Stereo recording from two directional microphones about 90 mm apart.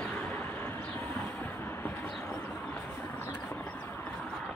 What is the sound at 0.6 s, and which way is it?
Vehicle, 20° left (ahead or behind).